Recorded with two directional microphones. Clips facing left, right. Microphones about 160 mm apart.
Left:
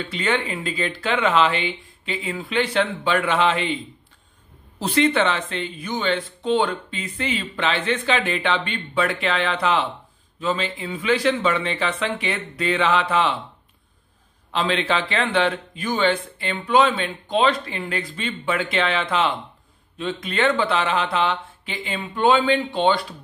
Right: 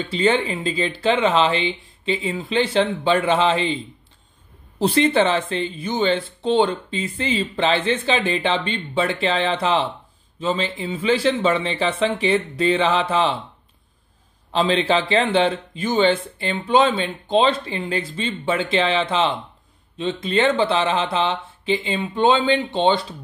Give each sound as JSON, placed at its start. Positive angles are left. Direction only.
{"t": 0.1, "sound": "speech", "side_deg": -30}
{"t": 14.5, "sound": "speech", "side_deg": -30}